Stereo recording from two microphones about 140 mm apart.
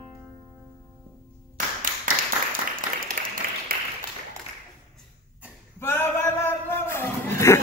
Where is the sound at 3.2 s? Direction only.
80° right.